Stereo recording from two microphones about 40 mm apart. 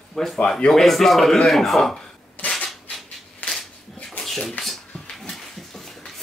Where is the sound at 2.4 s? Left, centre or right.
Left.